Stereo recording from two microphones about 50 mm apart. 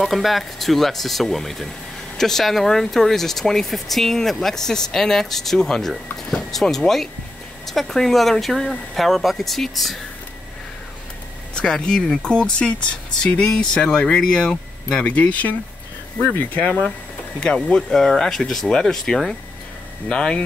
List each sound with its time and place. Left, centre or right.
0.0 s speech: centre
11.5 s speech: centre
15.0 s speech: left
16.5 s speech: left
17.4 s speech: centre